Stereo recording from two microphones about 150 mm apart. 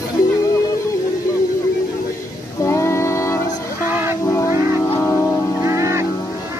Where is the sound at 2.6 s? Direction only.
20° left (ahead or behind).